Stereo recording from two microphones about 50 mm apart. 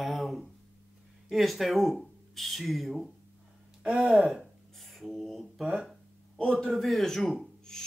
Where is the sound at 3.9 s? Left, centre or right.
Centre.